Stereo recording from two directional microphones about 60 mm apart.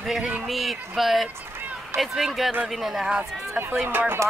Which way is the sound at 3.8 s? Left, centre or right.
Right.